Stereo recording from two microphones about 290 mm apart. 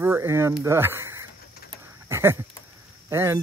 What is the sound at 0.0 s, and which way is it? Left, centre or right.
Speech, centre.